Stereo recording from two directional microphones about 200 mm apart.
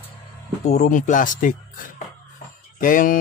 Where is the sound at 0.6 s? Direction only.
35° left (ahead or behind).